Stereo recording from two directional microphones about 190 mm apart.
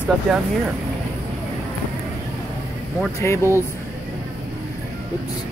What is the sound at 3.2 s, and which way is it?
Speech, 15° left (ahead or behind).